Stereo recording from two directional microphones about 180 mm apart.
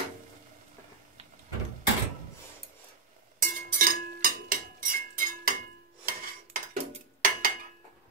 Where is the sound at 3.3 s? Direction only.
50° right (ahead or behind).